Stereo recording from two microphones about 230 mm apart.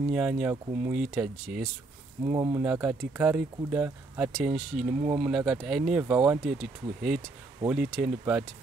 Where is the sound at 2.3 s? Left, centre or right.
Centre.